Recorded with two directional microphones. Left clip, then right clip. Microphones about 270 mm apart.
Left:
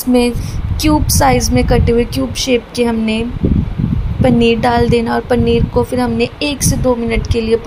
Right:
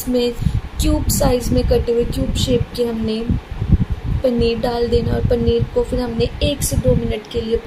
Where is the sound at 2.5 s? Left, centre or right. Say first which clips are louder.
Left 5 dB; left.